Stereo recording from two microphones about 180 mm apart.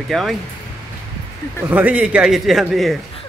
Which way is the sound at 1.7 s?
10° right (ahead or behind).